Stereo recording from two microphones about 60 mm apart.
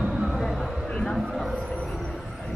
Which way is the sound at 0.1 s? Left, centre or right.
Centre.